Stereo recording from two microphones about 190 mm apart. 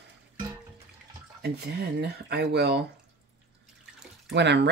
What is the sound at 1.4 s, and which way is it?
Speech, 60° right (ahead or behind).